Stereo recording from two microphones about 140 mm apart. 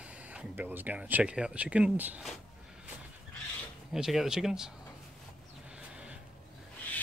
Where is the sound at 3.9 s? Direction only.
5° right (ahead or behind).